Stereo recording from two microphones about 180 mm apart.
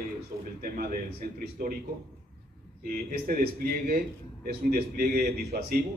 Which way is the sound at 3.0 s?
50° right (ahead or behind).